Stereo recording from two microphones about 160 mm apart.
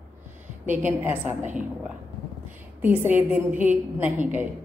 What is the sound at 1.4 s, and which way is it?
Speech, 50° right (ahead or behind).